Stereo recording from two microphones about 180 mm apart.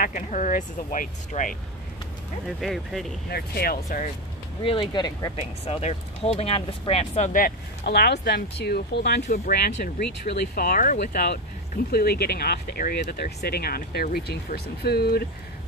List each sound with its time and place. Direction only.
0.0 s speech: 45° left (ahead or behind)
2.4 s speech: centre (ahead or behind)
3.3 s speech: 60° left (ahead or behind)
4.6 s speech: 25° left (ahead or behind)
5.4 s speech: 35° left (ahead or behind)
7.3 s speech: 60° left (ahead or behind)